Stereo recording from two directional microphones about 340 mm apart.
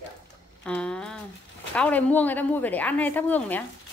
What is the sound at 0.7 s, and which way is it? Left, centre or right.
A woman's voice, centre.